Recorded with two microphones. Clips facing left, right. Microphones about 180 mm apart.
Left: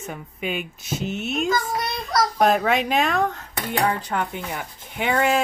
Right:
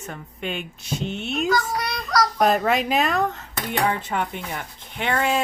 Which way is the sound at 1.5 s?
25° left (ahead or behind).